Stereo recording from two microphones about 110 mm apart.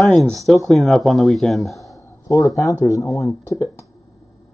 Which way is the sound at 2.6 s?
30° left (ahead or behind).